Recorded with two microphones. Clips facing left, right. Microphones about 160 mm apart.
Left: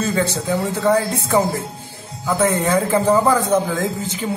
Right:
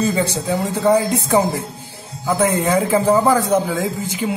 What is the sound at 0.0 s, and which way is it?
A man's voice, 15° right (ahead or behind).